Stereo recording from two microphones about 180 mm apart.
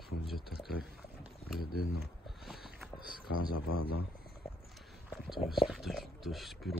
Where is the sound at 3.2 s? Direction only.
60° left (ahead or behind).